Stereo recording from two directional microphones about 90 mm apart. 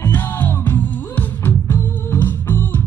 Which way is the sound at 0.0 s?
20° left (ahead or behind).